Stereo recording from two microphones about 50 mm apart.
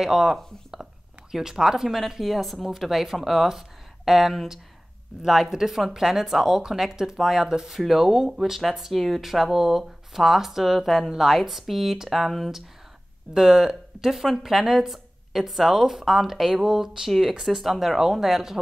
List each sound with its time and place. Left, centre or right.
0.0 s a woman's voice: centre
7.8 s a woman's voice: centre